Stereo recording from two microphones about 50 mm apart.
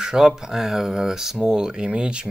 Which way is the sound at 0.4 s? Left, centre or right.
Centre.